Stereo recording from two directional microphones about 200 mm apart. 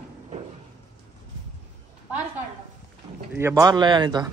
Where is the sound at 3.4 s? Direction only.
15° right (ahead or behind).